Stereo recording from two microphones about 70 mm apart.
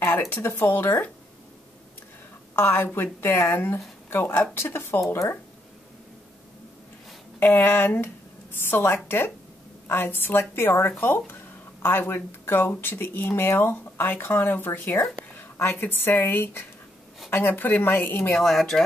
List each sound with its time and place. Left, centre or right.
0.0 s speech: left
2.5 s speech: left
7.3 s speech: left
18.3 s speech: centre